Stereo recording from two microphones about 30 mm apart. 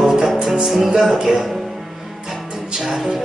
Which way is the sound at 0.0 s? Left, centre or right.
Right.